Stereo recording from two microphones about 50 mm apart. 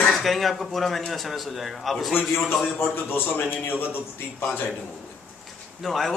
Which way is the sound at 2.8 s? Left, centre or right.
Left.